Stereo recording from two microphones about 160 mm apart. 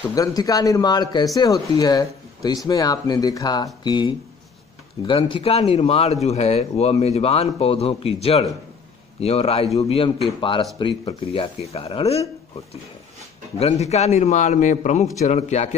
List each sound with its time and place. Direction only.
0.1 s a man's voice: 25° left (ahead or behind); by 12.2 s 40° left (ahead or behind)
13.6 s a man's voice: 40° left (ahead or behind)